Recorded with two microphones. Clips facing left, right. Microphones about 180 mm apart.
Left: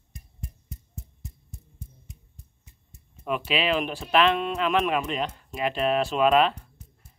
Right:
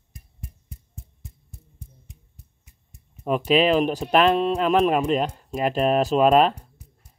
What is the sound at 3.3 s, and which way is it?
Speech, 40° right (ahead or behind).